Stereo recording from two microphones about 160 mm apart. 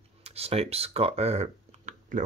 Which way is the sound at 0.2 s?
40° right (ahead or behind).